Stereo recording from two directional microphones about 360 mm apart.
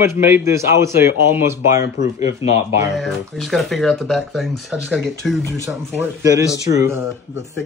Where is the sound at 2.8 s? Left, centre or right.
Centre.